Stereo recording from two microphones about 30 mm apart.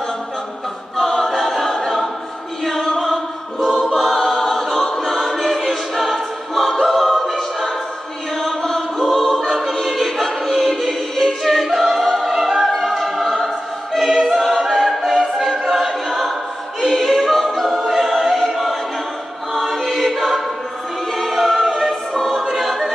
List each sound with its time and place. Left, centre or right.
0.9 s choir: centre
2.7 s a sound: centre
3.7 s choir: centre
10.5 s music: centre
11.6 s choir: centre
12.0 s opera: centre
12.3 s music: centre
12.7 s choir: centre
14.7 s choir: centre
17.7 s opera: centre
18.0 s choir: centre